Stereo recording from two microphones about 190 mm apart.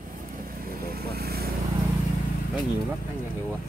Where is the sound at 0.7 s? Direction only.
50° right (ahead or behind).